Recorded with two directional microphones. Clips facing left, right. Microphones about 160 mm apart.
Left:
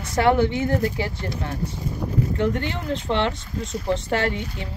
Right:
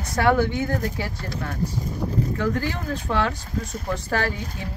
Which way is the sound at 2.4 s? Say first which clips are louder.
Left 1 dB; 25° left (ahead or behind).